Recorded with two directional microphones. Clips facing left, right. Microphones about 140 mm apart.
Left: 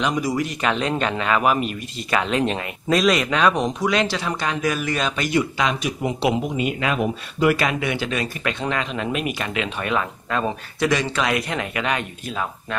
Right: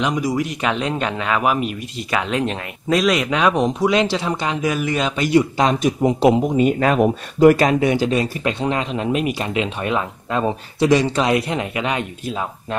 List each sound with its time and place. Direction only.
0.0 s speech: 15° right (ahead or behind)
5.3 s speech: 40° right (ahead or behind); by 12.4 s 20° right (ahead or behind)